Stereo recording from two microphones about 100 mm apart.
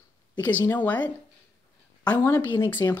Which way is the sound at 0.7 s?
15° left (ahead or behind).